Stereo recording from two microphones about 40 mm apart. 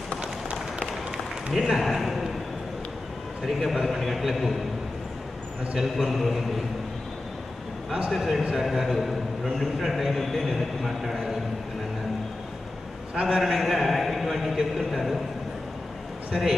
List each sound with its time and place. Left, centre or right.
0.2 s a sound: right
1.5 s a man's voice: centre
3.4 s a man's voice: centre
5.8 s a man's voice: centre
8.1 s a man's voice: centre
13.1 s a man's voice: right
13.4 s a man's voice: centre